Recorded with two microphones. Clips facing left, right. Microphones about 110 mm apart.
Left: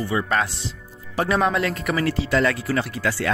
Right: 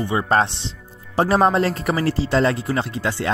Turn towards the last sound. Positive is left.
turn(degrees=-25)  # may be behind; listen again after turning